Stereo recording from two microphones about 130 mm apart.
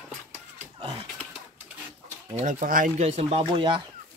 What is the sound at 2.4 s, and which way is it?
Speech, 75° right (ahead or behind).